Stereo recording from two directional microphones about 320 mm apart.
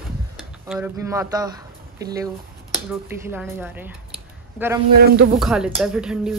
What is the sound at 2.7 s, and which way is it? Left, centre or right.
Speech, centre.